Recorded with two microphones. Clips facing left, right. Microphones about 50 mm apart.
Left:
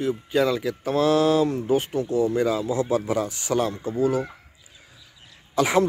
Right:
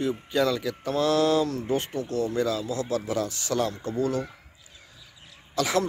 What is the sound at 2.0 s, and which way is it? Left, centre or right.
A man's voice, centre.